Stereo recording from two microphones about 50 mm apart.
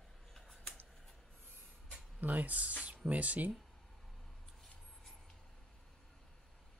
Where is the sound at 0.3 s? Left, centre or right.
Centre.